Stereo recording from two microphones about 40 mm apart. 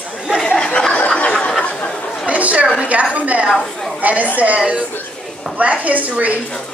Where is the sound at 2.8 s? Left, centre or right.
Right.